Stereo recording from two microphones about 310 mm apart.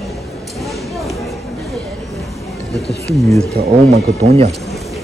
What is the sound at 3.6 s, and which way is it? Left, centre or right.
Speech, right.